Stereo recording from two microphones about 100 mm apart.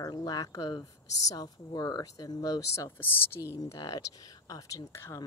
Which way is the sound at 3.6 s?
35° left (ahead or behind).